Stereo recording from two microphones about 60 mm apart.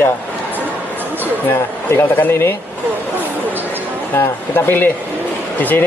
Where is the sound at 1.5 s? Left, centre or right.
Left.